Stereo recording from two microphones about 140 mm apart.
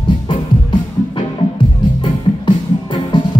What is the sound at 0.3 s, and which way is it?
Music, 35° left (ahead or behind).